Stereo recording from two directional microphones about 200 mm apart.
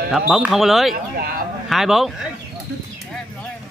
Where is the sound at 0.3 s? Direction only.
Centre (ahead or behind).